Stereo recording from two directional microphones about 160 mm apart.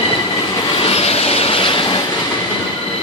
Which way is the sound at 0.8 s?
40° left (ahead or behind).